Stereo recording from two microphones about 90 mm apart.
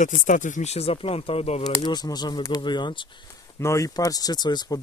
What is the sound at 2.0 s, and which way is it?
Speech, 50° left (ahead or behind).